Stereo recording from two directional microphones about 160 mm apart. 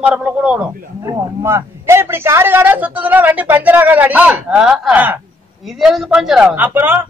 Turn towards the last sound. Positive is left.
turn(degrees=-10)  # may be behind; listen again after turning